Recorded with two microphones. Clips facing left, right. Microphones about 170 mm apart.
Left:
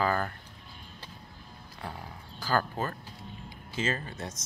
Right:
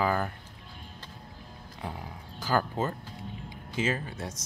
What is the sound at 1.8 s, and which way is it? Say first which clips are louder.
Speech: right 2 dB; 15° right (ahead or behind).